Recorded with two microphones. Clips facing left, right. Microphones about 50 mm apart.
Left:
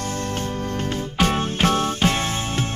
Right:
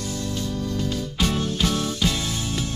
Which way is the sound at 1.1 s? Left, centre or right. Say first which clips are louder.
Left 5 dB; left.